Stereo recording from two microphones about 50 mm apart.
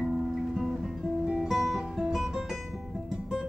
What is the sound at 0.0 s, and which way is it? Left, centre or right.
Music, centre.